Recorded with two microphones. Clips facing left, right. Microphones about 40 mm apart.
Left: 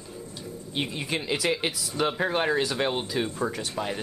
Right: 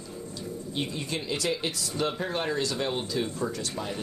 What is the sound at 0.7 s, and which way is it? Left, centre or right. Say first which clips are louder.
Speech: left 3 dB; left.